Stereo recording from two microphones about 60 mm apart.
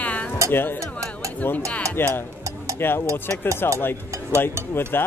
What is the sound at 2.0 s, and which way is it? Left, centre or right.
A man's voice, left.